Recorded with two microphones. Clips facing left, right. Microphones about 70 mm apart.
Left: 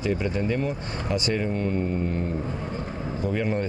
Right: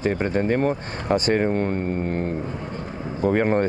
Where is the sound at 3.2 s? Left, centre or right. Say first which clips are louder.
Right 7 dB; right.